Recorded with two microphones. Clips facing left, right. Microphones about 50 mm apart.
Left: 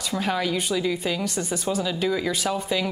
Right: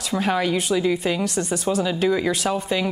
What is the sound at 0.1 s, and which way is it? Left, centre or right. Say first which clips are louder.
A woman's voice: right 4 dB; centre.